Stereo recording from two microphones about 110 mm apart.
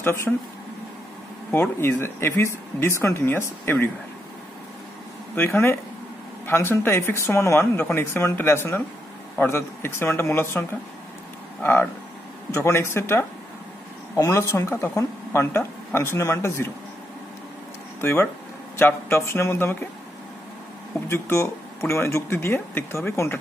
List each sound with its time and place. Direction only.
0.0 s speech: 20° left (ahead or behind)
1.5 s speech: 20° left (ahead or behind)
5.3 s speech: 20° left (ahead or behind)
18.0 s speech: 20° left (ahead or behind)
21.1 s speech: 25° left (ahead or behind)